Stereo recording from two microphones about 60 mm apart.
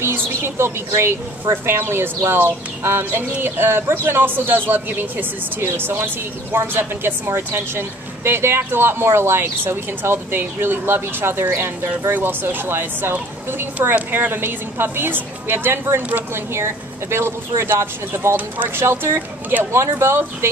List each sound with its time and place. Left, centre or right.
0.0 s a woman's voice: right